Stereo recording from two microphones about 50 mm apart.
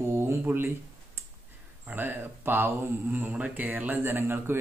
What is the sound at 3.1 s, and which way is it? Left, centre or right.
Speech, right.